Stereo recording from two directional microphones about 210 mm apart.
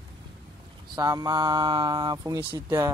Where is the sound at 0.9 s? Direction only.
20° right (ahead or behind).